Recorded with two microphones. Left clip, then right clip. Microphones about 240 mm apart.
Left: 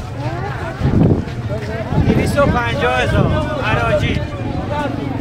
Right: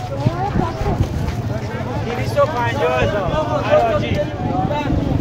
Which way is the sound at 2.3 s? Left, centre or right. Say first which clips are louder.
Right 1 dB; left.